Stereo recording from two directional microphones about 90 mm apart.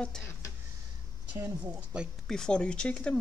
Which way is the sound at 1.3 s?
20° right (ahead or behind).